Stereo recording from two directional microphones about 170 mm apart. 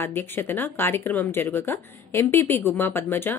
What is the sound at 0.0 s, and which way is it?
Speech, 15° left (ahead or behind).